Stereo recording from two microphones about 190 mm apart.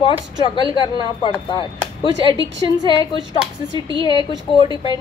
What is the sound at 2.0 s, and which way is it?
A woman's voice, 20° right (ahead or behind).